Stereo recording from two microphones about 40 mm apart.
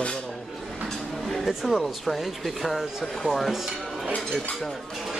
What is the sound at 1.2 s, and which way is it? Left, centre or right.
Speech, centre.